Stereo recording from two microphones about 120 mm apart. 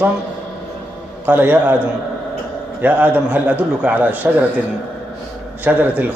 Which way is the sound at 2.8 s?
15° right (ahead or behind).